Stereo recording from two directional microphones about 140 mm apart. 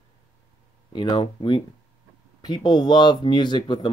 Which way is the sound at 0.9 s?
30° left (ahead or behind).